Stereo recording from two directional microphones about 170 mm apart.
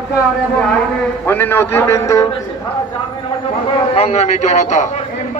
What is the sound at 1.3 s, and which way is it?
A man's voice, 10° left (ahead or behind).